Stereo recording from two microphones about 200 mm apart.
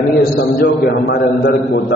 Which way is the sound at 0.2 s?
50° left (ahead or behind).